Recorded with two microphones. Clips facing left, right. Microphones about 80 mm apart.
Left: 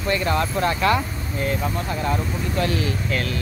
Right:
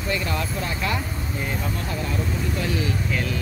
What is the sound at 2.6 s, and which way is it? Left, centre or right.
Speech, left.